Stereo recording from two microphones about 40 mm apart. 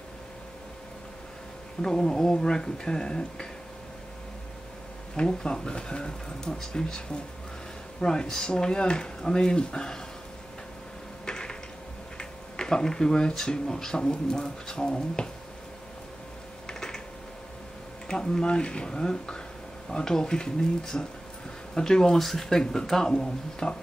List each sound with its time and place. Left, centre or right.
1.8 s speech: centre
5.2 s speech: centre
8.0 s speech: centre
11.2 s a sound: centre
12.2 s speech: centre
16.6 s typing: centre
18.0 s speech: centre
23.6 s speech: left